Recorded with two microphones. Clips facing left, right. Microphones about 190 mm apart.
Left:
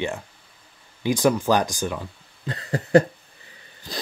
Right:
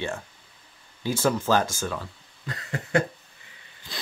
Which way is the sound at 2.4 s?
30° left (ahead or behind).